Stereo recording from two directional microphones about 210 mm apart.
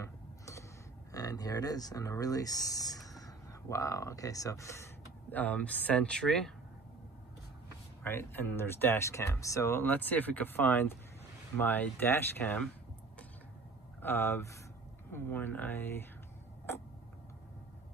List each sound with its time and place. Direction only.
0.0 s a sound: 15° left (ahead or behind)
1.1 s speech: 15° left (ahead or behind)
8.0 s speech: 10° left (ahead or behind)
14.0 s speech: 10° left (ahead or behind)